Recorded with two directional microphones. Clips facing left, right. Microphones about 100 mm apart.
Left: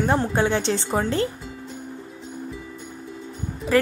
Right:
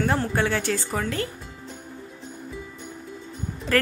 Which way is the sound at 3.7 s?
10° left (ahead or behind).